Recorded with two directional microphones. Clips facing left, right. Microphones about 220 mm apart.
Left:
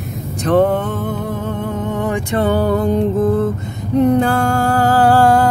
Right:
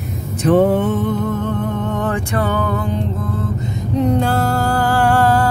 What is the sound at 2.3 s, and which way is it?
Music, 30° left (ahead or behind).